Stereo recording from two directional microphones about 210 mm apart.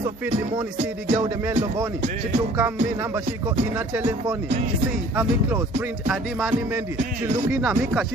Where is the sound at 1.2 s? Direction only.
10° right (ahead or behind).